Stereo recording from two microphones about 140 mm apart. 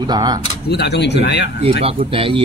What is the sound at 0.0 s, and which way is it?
Speech, 30° right (ahead or behind).